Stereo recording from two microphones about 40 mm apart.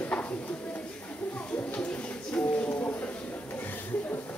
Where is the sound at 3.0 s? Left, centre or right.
Left.